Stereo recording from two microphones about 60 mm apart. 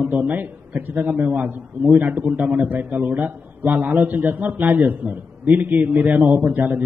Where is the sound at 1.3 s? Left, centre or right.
Right.